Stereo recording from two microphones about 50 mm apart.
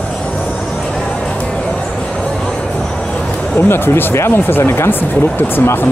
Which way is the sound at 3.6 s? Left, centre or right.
Left.